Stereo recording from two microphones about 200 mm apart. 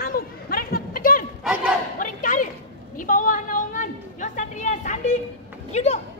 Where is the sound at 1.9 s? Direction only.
40° left (ahead or behind).